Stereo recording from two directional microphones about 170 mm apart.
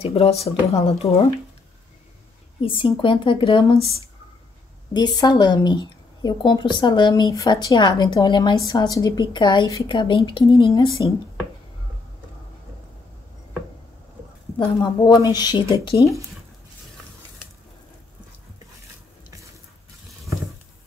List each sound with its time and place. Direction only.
0.0 s speech: 35° left (ahead or behind)
2.6 s a woman's voice: 30° left (ahead or behind)
4.9 s a woman's voice: 25° left (ahead or behind)
14.6 s a woman's voice: 25° left (ahead or behind)